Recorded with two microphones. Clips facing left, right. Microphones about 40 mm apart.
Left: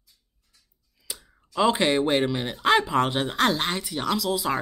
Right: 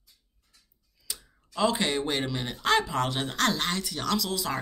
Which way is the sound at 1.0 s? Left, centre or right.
Centre.